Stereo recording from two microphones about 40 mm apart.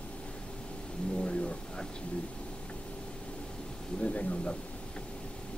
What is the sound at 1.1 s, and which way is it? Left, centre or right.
Vehicle, left.